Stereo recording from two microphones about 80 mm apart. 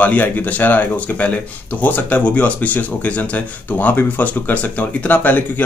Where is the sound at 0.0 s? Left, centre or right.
Centre.